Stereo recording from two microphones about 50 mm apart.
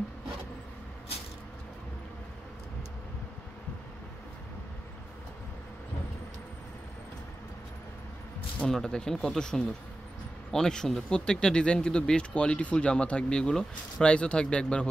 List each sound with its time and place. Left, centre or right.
8.6 s speech: centre